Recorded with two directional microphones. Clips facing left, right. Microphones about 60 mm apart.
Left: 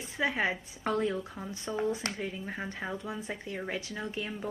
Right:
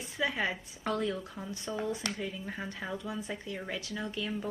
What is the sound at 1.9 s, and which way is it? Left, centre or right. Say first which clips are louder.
Speech: left 2 dB; left.